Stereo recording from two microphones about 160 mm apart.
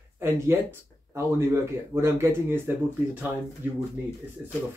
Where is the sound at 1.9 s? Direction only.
15° right (ahead or behind).